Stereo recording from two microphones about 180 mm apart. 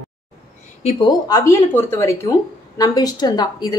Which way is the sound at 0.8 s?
30° left (ahead or behind).